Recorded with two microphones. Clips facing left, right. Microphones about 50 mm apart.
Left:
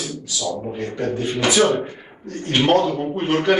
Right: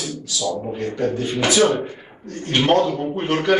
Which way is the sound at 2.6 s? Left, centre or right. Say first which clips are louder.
Even; centre.